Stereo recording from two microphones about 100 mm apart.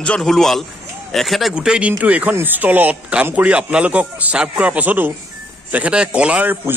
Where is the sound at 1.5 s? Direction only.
10° right (ahead or behind).